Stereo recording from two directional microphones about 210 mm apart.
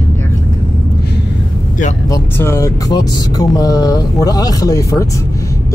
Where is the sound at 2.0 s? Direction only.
15° left (ahead or behind).